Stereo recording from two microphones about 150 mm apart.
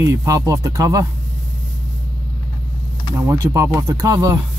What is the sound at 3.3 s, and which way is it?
Speech, 20° right (ahead or behind).